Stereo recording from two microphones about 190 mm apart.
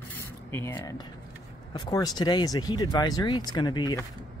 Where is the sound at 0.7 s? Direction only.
20° left (ahead or behind).